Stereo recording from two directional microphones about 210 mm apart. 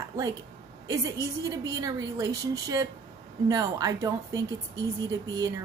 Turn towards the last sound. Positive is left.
turn(degrees=-15)  # may be behind; listen again after turning